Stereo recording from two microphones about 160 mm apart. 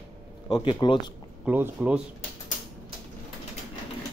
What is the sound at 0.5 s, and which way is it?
Speech, 30° left (ahead or behind).